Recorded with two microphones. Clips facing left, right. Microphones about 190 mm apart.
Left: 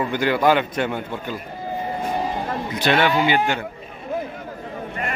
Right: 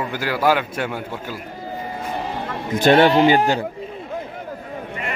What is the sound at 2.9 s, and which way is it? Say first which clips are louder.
Speech: right 5 dB; 40° right (ahead or behind).